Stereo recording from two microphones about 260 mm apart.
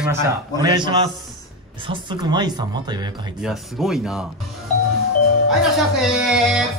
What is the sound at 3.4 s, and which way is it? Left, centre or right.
Speech, centre.